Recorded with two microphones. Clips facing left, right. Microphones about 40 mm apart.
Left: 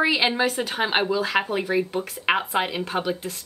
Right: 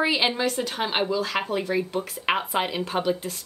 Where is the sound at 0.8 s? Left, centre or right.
Left.